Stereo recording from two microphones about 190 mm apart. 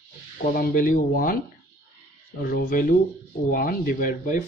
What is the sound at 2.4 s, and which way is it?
Speech, 50° left (ahead or behind).